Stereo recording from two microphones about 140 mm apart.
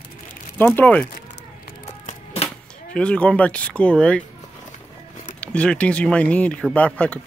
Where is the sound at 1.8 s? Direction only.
50° left (ahead or behind).